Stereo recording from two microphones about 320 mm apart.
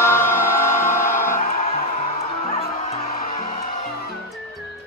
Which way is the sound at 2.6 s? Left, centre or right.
Left.